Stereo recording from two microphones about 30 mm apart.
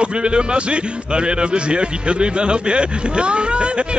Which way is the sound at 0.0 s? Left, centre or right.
Right.